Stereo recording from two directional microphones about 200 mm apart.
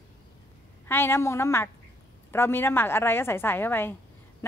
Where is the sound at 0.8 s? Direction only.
10° left (ahead or behind).